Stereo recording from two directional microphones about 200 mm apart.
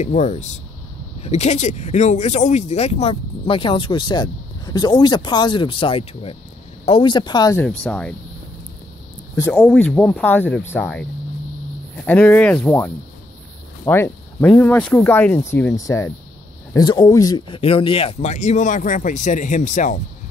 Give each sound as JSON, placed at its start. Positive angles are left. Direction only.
{"t": 0.0, "sound": "speech", "side_deg": 35}
{"t": 7.8, "sound": "speech", "side_deg": 5}
{"t": 9.3, "sound": "speech", "side_deg": 10}